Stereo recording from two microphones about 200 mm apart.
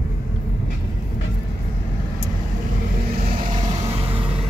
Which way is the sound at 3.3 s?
40° right (ahead or behind).